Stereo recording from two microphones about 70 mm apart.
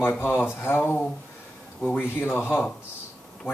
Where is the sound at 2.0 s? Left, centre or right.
Left.